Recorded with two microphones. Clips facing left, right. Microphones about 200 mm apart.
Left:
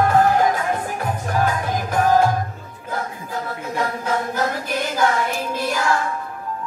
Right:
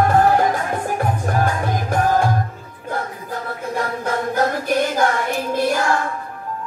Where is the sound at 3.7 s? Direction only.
50° right (ahead or behind).